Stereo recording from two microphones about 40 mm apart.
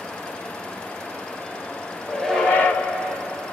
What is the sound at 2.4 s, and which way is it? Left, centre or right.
Train, left.